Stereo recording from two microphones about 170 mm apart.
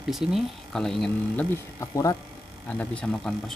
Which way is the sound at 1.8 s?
20° left (ahead or behind).